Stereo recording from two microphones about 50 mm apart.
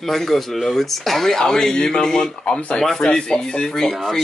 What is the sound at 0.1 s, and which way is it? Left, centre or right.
Speech, centre.